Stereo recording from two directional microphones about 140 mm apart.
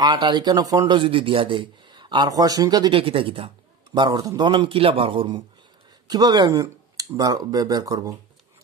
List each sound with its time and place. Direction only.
0.0 s a man's voice: 30° right (ahead or behind)
3.0 s a man's voice: 40° right (ahead or behind)
6.0 s speech: 30° right (ahead or behind)